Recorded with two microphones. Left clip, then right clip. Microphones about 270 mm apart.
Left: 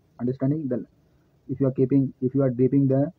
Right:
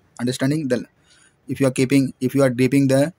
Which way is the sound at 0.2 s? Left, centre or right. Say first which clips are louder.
Right 4 dB; right.